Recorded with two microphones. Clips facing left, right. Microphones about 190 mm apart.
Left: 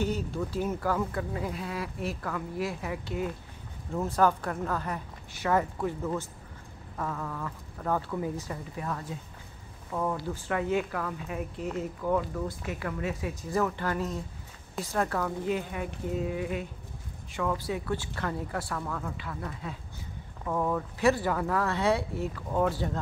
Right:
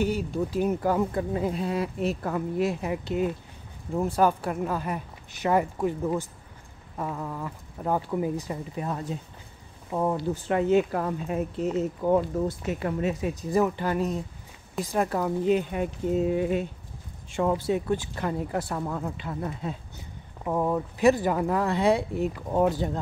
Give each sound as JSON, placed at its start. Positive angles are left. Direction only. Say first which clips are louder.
{"t": 0.0, "sound": "speech", "louder": "right 4 dB", "side_deg": -15}